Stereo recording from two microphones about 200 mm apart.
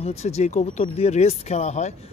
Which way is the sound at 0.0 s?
30° left (ahead or behind).